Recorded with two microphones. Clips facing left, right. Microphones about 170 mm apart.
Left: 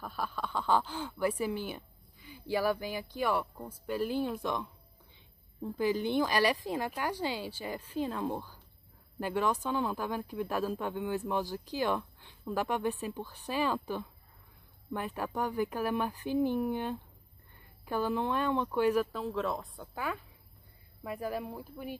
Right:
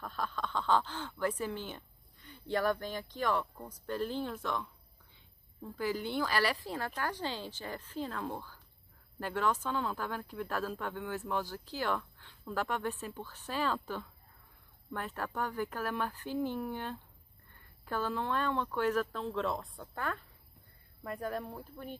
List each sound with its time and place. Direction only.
0.0 s speech: 10° left (ahead or behind)
14.9 s speech: 15° left (ahead or behind)